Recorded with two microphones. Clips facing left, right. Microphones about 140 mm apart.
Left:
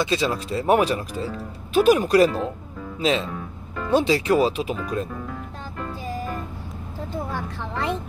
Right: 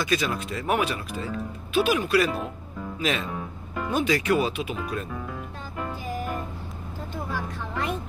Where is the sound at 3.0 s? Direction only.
30° left (ahead or behind).